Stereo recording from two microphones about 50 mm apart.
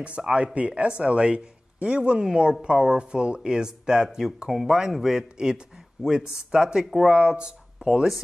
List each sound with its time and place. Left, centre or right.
0.2 s speech: centre
0.6 s speech: right
2.1 s speech: centre
4.5 s speech: centre